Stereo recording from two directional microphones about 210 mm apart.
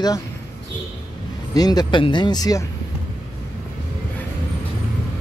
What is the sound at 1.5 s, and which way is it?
Speech, 20° left (ahead or behind).